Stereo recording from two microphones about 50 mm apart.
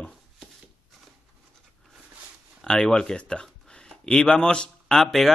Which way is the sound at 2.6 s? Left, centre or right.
Centre.